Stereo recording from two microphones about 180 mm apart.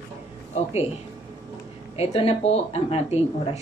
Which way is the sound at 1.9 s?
35° left (ahead or behind).